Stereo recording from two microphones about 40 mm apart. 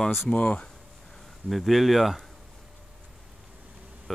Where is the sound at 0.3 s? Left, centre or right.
Left.